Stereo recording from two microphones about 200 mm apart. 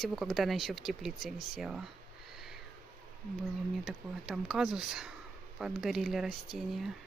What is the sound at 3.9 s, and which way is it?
Speech, centre (ahead or behind).